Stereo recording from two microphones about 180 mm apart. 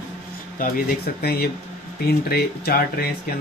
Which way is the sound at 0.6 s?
55° left (ahead or behind).